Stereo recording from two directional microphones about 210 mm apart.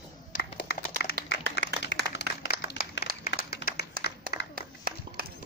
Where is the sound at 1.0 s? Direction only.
60° left (ahead or behind).